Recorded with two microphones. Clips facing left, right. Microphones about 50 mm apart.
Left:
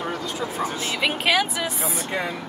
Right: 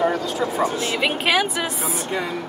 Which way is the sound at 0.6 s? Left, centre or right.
Right.